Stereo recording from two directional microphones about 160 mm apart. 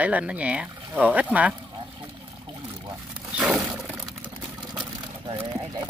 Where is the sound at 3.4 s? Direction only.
Centre (ahead or behind).